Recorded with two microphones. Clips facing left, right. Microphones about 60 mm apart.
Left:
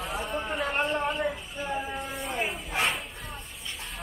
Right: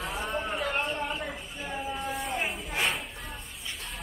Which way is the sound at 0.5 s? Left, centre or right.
Left.